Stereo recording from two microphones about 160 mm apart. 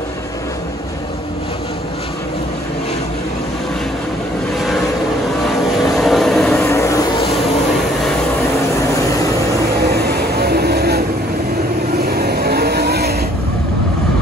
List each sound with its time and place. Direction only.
5.8 s vehicle: centre (ahead or behind)
6.6 s vehicle: 20° left (ahead or behind)
9.8 s vehicle: 85° right
12.1 s vehicle: 80° right